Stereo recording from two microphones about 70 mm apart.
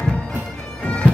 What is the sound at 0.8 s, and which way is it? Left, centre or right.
Bagpipes, centre.